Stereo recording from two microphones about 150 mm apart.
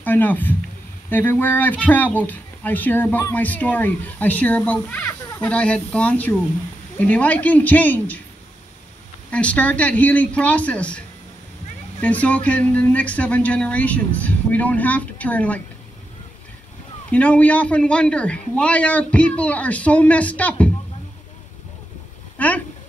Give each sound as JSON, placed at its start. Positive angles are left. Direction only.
{"t": 0.0, "sound": "speech", "side_deg": 10}
{"t": 9.3, "sound": "speech", "side_deg": 10}
{"t": 17.1, "sound": "speech", "side_deg": 10}